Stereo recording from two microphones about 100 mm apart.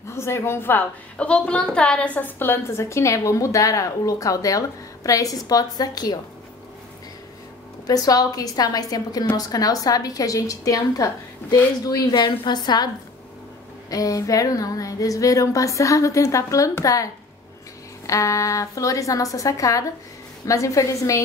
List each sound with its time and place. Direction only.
0.1 s a woman's voice: 25° left (ahead or behind)
7.8 s a woman's voice: 40° left (ahead or behind)
12.2 s a woman's voice: 50° left (ahead or behind); by 21.2 s 30° left (ahead or behind)